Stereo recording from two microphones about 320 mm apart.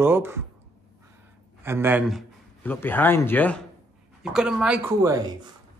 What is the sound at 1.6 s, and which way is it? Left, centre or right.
A man's voice, centre.